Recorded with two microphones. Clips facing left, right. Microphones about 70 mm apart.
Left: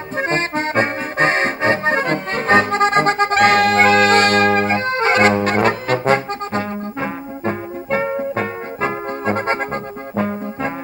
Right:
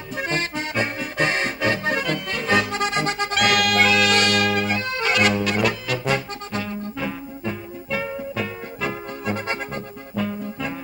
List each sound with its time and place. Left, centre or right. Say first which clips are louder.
0.1 s accordion: left 6 dB; left
10.1 s brass instrument: left 5 dB; left